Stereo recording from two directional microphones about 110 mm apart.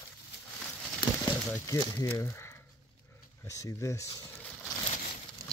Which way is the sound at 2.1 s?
25° left (ahead or behind).